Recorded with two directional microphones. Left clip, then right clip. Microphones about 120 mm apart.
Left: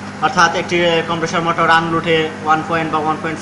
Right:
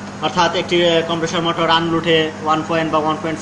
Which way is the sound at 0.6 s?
40° right (ahead or behind).